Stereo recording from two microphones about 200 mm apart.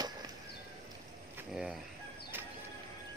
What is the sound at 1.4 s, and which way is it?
Speech, 5° right (ahead or behind).